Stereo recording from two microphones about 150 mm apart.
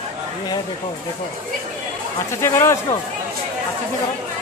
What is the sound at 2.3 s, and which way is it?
Speech, 20° left (ahead or behind).